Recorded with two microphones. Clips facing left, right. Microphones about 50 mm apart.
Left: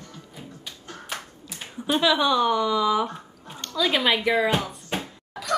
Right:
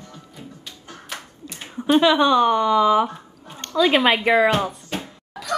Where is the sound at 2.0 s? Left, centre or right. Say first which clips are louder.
Right 3 dB; right.